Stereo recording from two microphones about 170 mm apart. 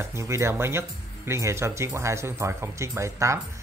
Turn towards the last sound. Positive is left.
turn(degrees=-15)  # may be behind; listen again after turning